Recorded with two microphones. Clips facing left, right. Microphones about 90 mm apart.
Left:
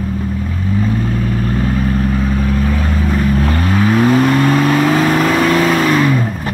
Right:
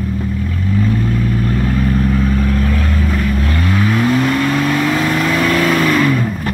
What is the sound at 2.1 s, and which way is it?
Vehicle, 15° left (ahead or behind).